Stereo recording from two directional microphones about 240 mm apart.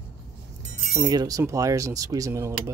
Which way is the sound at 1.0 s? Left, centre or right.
Centre.